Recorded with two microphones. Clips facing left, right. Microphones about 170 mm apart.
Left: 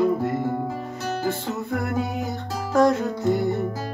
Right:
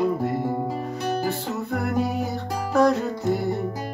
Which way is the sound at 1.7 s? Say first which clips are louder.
Right 2 dB; centre (ahead or behind).